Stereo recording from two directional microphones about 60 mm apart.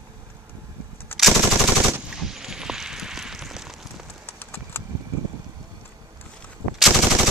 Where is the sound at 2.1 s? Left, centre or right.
Centre.